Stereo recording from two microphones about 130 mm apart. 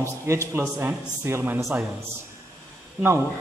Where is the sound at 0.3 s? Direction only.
20° right (ahead or behind).